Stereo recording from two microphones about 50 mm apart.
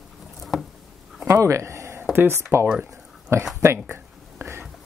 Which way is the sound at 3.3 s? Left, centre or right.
Right.